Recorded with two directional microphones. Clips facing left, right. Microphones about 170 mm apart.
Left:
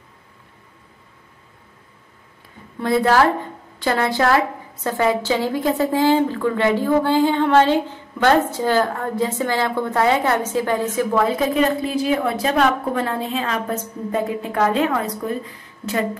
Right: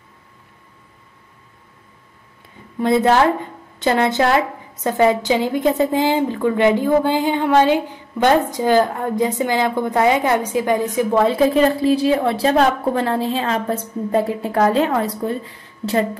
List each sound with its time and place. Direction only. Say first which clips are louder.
2.8 s a woman's voice: right 2 dB; 20° right (ahead or behind)
11.1 s a woman's voice: right 4 dB; 30° right (ahead or behind)